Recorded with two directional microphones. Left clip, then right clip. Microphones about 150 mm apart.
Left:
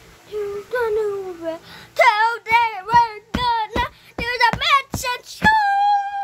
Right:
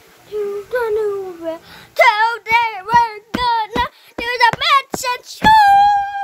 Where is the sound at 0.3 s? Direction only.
50° right (ahead or behind).